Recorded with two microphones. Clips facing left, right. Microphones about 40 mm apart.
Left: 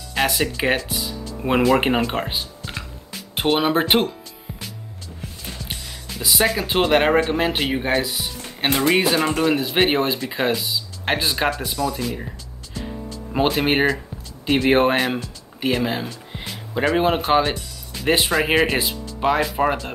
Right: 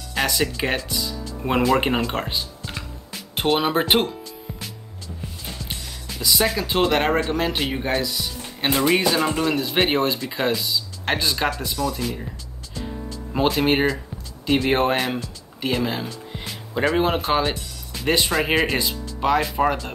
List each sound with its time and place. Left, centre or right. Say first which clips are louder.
0.1 s speech: left 1 dB; centre
1.4 s speech: left 2 dB; centre
1.9 s music: left 2 dB; centre
6.1 s speech: left 1 dB; centre
13.3 s speech: even; centre